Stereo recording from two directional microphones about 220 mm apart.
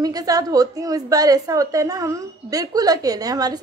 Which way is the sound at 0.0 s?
15° right (ahead or behind).